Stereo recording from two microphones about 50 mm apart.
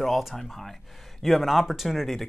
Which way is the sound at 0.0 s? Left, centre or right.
Centre.